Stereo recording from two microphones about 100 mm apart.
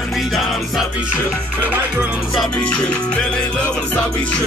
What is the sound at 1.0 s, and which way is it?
Music, 15° right (ahead or behind).